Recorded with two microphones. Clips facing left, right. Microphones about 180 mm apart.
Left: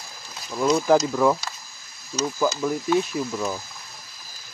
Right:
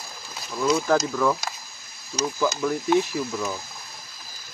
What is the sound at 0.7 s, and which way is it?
Speech, 15° left (ahead or behind).